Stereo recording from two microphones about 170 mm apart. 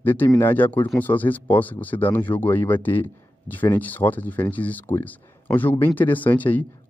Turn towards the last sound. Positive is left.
turn(degrees=10)  # may be behind; listen again after turning